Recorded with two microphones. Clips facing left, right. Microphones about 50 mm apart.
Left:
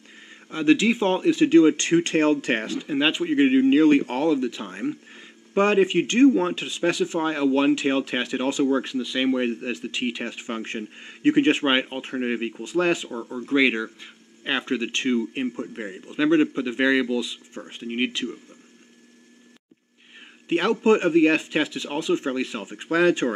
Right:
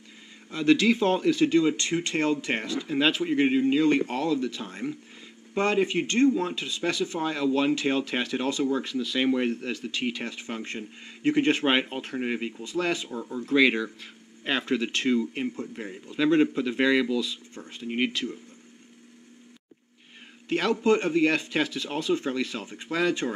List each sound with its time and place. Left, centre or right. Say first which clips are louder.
0.5 s speech: left 2 dB; left
2.9 s speech: left 2 dB; centre
9.0 s speech: left 2 dB; centre
11.5 s speech: left 2 dB; centre
13.5 s speech: left 1 dB; centre
17.6 s speech: left 2 dB; left
20.4 s a man's voice: left 4 dB; left
22.8 s speech: left 6 dB; left